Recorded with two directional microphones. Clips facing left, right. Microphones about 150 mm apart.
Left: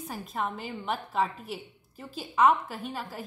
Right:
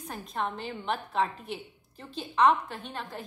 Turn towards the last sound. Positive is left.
turn(degrees=5)  # may be behind; listen again after turning